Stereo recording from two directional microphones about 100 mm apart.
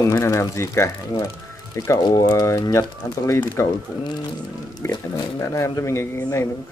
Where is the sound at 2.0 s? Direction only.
45° left (ahead or behind); by 3.7 s 30° left (ahead or behind).